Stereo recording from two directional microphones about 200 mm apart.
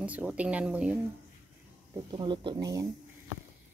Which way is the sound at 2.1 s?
25° right (ahead or behind).